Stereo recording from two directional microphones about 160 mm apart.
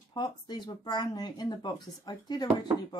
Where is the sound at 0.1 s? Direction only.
25° left (ahead or behind).